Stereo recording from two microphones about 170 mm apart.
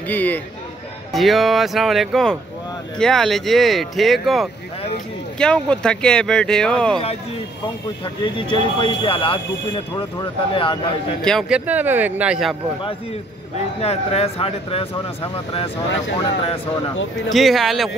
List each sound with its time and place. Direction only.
0.1 s a man's voice: 10° left (ahead or behind)
8.0 s speech: 30° left (ahead or behind)
11.2 s speech: centre (ahead or behind)
13.7 s speech: 35° left (ahead or behind)
17.3 s speech: centre (ahead or behind)